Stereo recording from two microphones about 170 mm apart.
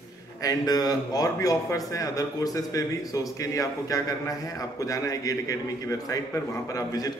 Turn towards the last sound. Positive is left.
turn(degrees=20)  # may be behind; listen again after turning